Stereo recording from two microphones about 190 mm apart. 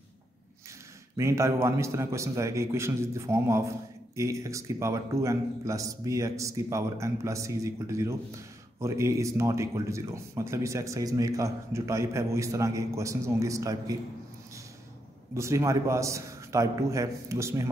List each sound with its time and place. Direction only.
1.1 s a man's voice: 15° right (ahead or behind)
15.3 s a man's voice: 15° right (ahead or behind)